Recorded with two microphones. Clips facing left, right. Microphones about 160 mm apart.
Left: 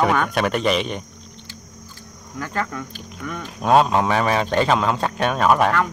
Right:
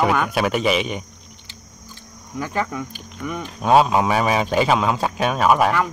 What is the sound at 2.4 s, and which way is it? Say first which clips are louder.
A man's voice: right 2 dB; 15° right (ahead or behind).